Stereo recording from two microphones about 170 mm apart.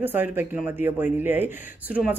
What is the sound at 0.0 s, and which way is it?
Speech, 10° right (ahead or behind).